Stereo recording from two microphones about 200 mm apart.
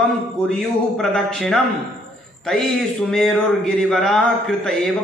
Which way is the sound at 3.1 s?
Centre (ahead or behind).